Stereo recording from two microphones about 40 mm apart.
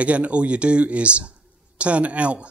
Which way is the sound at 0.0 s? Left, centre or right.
Right.